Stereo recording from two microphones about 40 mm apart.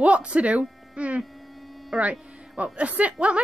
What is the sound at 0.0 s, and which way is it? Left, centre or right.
A woman's voice, right.